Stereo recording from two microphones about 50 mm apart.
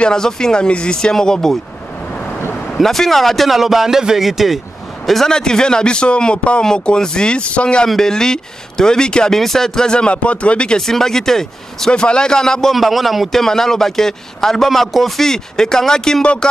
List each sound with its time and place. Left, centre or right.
0.0 s a man's voice: centre
2.8 s a man's voice: centre
5.3 s a man's voice: centre
10.9 s a man's voice: centre
11.9 s a man's voice: centre
12.7 s a man's voice: centre